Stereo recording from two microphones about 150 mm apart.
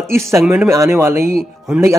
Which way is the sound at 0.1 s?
20° right (ahead or behind).